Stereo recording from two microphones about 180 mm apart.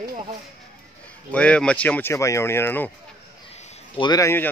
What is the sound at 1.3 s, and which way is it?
Speech, 5° left (ahead or behind).